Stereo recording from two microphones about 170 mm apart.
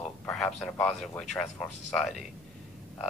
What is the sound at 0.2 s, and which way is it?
A man's voice, 5° left (ahead or behind).